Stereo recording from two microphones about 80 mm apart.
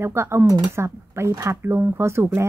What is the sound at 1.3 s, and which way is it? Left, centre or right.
Speech, right.